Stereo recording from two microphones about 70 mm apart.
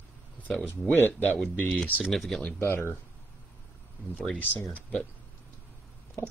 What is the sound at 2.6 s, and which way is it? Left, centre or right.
Speech, left.